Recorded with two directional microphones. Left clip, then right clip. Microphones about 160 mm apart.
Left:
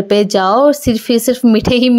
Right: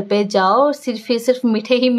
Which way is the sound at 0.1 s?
35° left (ahead or behind).